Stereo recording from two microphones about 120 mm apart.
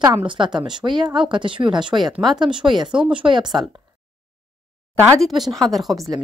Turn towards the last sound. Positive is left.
turn(degrees=0)  # may be behind; listen again after turning